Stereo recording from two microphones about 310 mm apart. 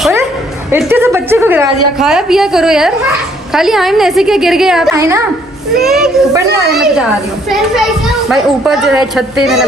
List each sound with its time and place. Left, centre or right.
0.7 s a woman's voice: centre